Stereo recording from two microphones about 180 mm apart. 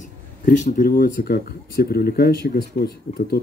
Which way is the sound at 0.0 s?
45° left (ahead or behind).